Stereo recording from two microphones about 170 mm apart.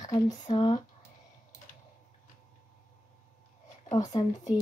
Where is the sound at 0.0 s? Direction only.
20° left (ahead or behind).